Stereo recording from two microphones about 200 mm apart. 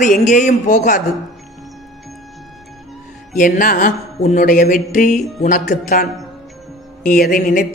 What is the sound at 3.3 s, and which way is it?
A man's voice, 40° left (ahead or behind).